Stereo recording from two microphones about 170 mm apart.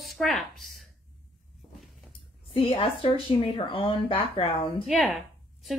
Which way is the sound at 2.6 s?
35° left (ahead or behind).